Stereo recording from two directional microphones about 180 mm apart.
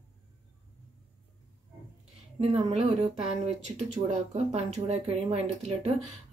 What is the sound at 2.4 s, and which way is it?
Speech, 35° right (ahead or behind).